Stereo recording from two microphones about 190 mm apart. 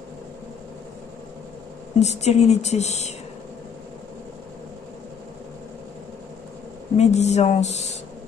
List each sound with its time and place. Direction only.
2.0 s speech: 35° left (ahead or behind)
7.0 s speech: 35° left (ahead or behind)